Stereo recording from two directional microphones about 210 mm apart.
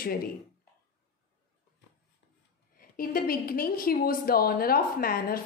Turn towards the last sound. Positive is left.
turn(degrees=45)  # may be behind; listen again after turning